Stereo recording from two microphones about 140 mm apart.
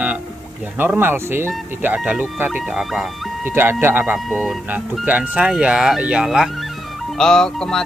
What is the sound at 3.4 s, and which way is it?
Speech, 15° right (ahead or behind).